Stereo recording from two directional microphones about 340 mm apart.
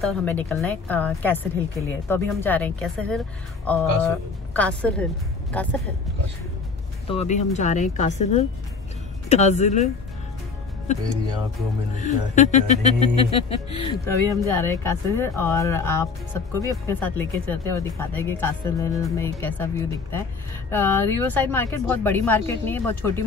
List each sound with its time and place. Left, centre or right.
0.0 s a woman's voice: centre
7.1 s speech: centre
12.0 s a woman's voice: left